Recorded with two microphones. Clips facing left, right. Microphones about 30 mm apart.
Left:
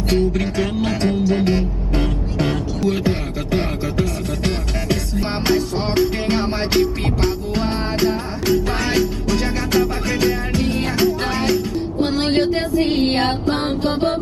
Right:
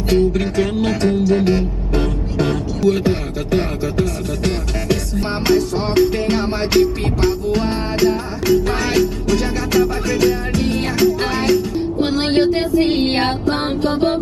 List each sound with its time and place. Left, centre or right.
0.1 s music: centre
11.3 s music: centre
12.2 s a sound: centre
12.5 s music: centre